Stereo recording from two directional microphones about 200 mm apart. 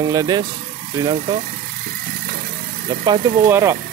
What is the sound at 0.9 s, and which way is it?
Speech, 20° right (ahead or behind).